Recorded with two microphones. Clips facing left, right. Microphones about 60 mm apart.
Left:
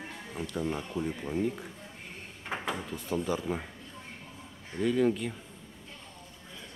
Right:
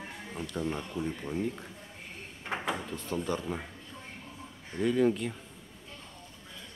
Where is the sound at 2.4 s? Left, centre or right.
Centre.